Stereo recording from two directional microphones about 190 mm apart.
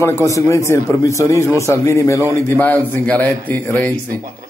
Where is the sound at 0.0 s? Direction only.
15° left (ahead or behind).